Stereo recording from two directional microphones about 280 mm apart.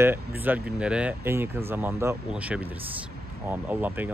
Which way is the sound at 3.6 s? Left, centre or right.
Centre.